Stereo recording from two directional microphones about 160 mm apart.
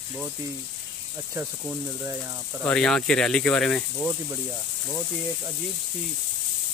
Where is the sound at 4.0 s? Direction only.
15° right (ahead or behind).